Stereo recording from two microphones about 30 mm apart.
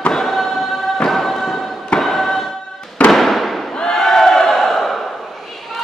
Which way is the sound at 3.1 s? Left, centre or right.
Centre.